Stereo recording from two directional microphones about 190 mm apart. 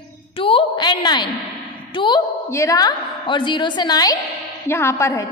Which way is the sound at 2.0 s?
20° left (ahead or behind).